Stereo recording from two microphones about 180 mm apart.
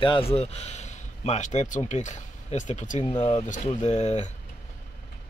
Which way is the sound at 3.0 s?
25° left (ahead or behind).